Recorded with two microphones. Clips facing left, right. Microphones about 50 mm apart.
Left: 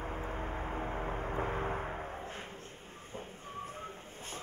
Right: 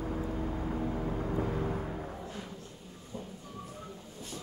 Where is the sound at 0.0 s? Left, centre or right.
Left.